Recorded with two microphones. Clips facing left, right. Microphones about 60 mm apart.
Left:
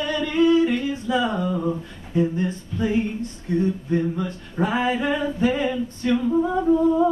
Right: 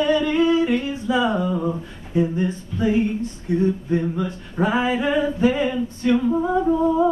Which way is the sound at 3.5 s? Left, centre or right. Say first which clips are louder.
Right 2 dB; centre.